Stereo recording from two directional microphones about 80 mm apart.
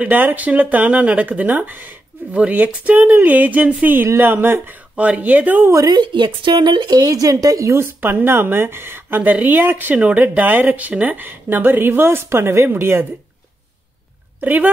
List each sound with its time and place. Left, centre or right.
0.0 s speech: right
5.9 s speech: right
7.7 s speech: right
14.4 s speech: right